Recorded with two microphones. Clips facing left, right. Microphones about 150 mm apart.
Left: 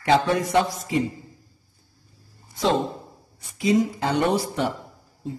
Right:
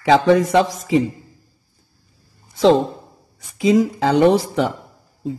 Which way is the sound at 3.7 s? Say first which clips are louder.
Right 5 dB; 90° right.